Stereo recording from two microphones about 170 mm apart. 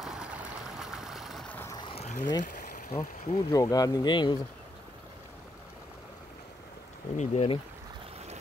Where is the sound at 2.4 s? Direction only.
50° left (ahead or behind).